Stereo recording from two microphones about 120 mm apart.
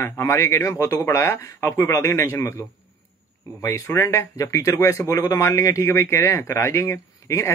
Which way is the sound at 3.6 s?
25° left (ahead or behind).